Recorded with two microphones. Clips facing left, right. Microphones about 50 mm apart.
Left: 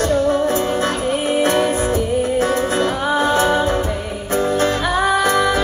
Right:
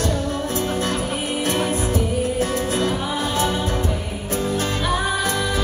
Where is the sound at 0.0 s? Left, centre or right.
Left.